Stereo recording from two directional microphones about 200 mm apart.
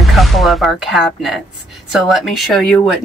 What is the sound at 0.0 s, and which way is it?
Speech, centre (ahead or behind).